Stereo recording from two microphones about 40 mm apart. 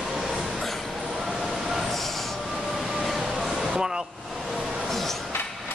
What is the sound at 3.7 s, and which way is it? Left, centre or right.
Speech, centre.